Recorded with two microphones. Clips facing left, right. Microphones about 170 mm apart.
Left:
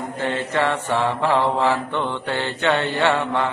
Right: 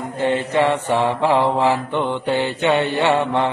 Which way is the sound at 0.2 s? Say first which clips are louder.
Right 5 dB; 15° right (ahead or behind).